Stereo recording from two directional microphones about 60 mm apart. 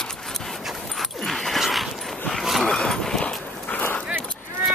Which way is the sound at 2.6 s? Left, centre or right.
Centre.